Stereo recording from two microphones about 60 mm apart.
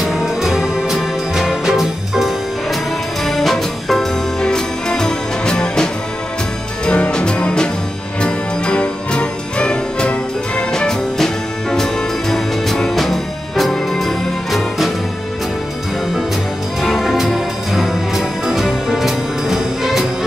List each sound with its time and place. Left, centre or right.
0.0 s music: centre
6.9 s music: centre
16.8 s music: centre